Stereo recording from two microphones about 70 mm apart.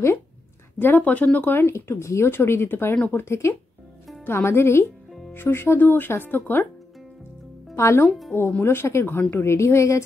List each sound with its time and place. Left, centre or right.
0.7 s speech: left
7.7 s speech: left
9.0 s speech: left